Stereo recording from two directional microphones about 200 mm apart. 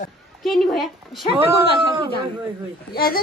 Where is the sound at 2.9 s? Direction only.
50° left (ahead or behind).